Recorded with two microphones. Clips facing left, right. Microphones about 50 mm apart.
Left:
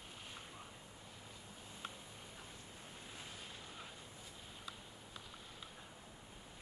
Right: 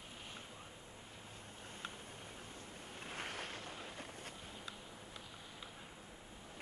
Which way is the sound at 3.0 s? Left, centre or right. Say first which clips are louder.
Right 9 dB; right.